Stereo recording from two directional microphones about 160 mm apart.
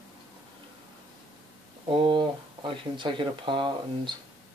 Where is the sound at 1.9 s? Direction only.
30° right (ahead or behind).